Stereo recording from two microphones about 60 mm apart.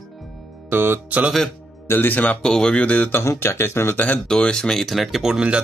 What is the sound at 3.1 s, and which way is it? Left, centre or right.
Speech, left.